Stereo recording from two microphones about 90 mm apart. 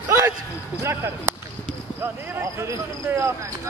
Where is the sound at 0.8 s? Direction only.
30° right (ahead or behind).